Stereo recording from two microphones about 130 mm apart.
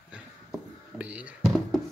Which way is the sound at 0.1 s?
10° right (ahead or behind).